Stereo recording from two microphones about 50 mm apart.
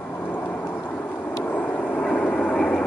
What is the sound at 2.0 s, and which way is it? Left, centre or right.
Vehicle, left.